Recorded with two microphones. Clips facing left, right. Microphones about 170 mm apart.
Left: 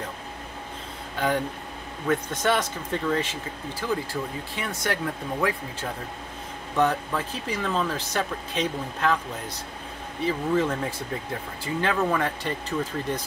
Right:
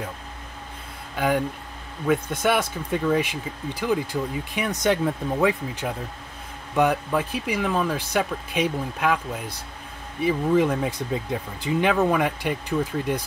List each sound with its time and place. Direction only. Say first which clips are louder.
1.1 s speech: right 3 dB; 10° right (ahead or behind)